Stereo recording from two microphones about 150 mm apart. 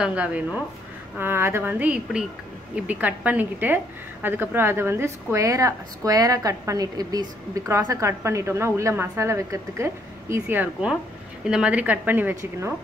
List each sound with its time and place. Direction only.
0.0 s a woman's voice: 10° right (ahead or behind)